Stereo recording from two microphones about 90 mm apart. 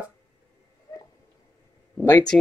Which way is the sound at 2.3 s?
20° left (ahead or behind).